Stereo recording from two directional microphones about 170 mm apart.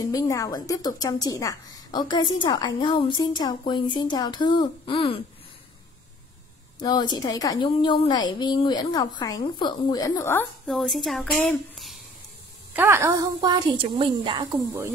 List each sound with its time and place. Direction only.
0.0 s a woman's voice: 20° left (ahead or behind)
6.8 s a woman's voice: 25° left (ahead or behind)
10.7 s speech: centre (ahead or behind)
11.3 s child singing: 5° left (ahead or behind)
12.7 s a woman's voice: 15° right (ahead or behind)